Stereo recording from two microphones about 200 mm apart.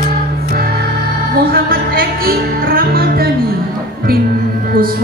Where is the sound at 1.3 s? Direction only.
50° right (ahead or behind).